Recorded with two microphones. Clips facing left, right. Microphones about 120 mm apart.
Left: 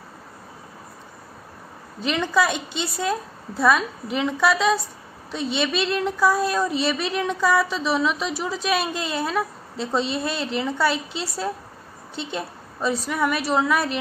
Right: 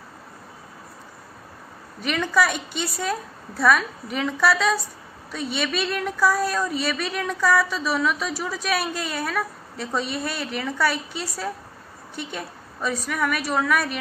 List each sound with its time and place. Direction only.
2.0 s a woman's voice: 20° left (ahead or behind)